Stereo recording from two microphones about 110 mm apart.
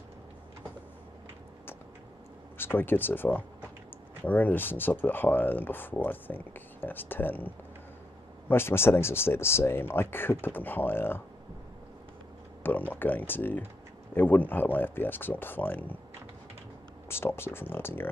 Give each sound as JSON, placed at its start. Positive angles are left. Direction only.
{"t": 2.5, "sound": "speech", "side_deg": 20}
{"t": 12.9, "sound": "speech", "side_deg": 15}
{"t": 17.1, "sound": "speech", "side_deg": 20}